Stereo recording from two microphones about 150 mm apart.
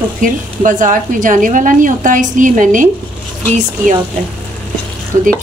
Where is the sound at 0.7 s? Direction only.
60° right (ahead or behind).